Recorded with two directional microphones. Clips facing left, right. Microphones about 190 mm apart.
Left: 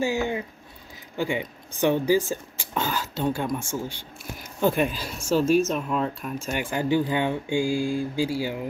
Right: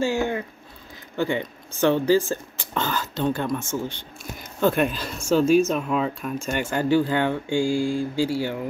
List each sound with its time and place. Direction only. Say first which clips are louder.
0.0 s speech: right 2 dB; 15° left (ahead or behind)